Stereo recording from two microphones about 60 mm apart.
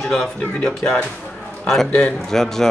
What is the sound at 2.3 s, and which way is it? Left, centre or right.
Speech, centre.